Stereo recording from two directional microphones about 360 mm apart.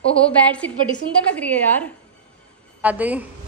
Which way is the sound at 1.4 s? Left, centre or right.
Centre.